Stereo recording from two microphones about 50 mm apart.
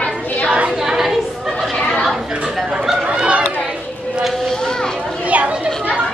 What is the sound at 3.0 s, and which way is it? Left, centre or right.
Chatter, right.